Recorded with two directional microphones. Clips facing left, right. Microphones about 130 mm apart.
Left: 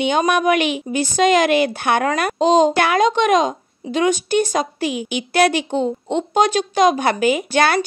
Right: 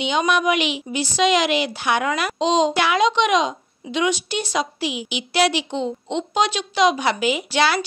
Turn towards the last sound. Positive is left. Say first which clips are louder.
# left 3 dB
turn(degrees=50)  # may be behind; listen again after turning